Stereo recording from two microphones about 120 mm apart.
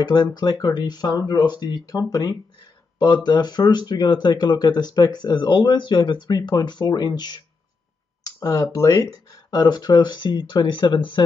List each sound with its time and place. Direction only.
0.0 s speech: 35° left (ahead or behind)
8.2 s a sound: 30° left (ahead or behind)
8.7 s speech: 30° left (ahead or behind)